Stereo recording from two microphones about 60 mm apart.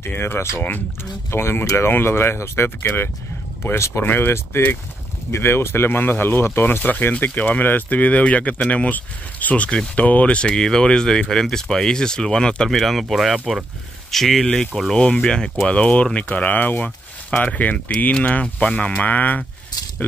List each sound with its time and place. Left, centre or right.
0.1 s speech: left
6.8 s speech: left; by 14.5 s centre
15.0 s speech: centre
16.3 s speech: left